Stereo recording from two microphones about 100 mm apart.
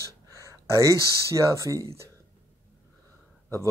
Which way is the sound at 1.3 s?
30° right (ahead or behind).